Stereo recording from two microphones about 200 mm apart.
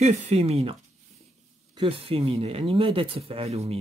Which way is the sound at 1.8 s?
30° right (ahead or behind).